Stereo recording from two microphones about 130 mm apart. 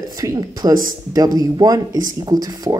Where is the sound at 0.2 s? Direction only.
30° right (ahead or behind).